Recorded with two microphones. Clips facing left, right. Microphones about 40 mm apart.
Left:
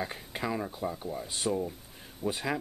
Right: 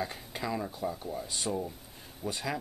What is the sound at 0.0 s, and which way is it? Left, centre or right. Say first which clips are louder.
Speech: left 1 dB; centre.